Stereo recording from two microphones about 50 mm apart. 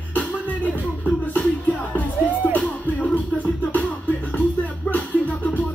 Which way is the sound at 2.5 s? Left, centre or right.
Left.